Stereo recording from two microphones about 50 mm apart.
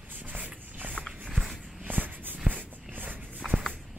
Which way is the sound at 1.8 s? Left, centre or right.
Right.